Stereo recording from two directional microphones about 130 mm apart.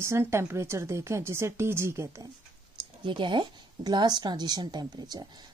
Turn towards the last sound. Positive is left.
turn(degrees=-35)  # may be behind; listen again after turning